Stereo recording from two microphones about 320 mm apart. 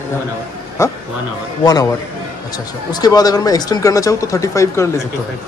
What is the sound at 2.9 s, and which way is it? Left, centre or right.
Speech, centre.